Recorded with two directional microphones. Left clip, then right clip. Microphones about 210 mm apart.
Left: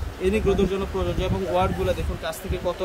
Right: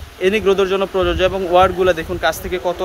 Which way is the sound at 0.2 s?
Centre (ahead or behind).